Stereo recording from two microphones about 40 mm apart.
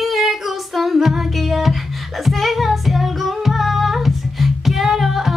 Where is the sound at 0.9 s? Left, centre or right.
Centre.